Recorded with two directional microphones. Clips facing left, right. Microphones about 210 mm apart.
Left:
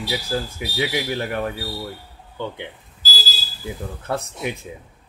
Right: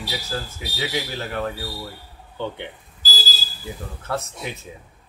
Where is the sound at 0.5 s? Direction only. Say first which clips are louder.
Left 3 dB; 15° left (ahead or behind).